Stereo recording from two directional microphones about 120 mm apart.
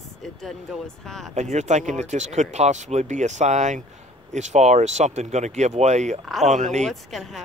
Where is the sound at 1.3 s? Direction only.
70° right (ahead or behind).